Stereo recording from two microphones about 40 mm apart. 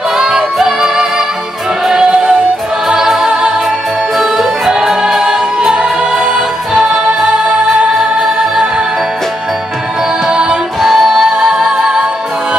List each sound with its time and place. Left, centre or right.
0.1 s music: centre
1.9 s choir: centre
2.9 s music: centre
10.2 s music: right
10.8 s music: centre